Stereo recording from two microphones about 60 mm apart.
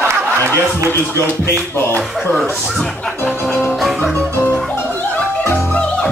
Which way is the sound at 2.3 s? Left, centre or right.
Centre.